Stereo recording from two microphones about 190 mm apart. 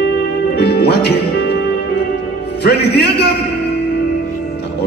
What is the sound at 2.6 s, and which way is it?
Speech, 60° left (ahead or behind).